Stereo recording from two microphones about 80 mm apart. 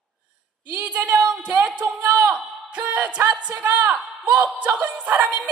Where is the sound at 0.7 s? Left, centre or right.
Centre.